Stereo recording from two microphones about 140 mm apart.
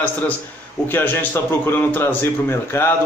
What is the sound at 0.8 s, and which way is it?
Speech, 15° left (ahead or behind).